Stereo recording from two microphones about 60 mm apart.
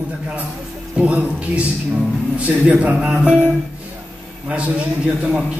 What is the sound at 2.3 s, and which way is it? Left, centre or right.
Speech, right.